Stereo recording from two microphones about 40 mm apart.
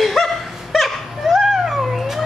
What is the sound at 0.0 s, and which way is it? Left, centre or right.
Dog, centre.